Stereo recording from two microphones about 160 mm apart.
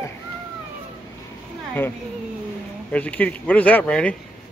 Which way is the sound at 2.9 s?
10° left (ahead or behind).